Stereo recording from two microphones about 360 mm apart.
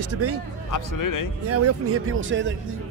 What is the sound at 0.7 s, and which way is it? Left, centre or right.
Speech, left.